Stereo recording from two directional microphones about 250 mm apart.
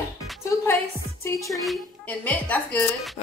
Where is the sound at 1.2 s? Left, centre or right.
Centre.